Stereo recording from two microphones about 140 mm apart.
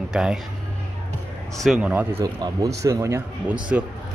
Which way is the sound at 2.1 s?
25° right (ahead or behind).